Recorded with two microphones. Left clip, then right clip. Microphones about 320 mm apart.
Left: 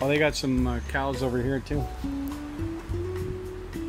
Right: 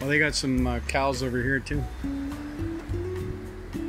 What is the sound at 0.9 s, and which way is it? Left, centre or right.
Speech, centre.